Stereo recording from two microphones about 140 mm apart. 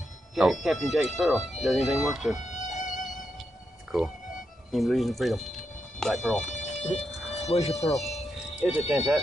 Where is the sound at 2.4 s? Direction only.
60° left (ahead or behind).